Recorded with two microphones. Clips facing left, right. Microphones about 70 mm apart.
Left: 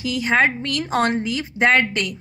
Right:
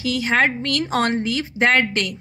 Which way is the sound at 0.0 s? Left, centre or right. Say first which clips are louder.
Even; left.